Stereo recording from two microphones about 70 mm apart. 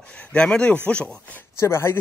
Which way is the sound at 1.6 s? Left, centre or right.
Left.